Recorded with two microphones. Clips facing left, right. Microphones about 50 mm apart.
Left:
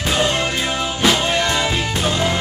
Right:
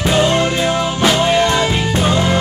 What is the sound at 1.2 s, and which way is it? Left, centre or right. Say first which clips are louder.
Music: right 5 dB; right.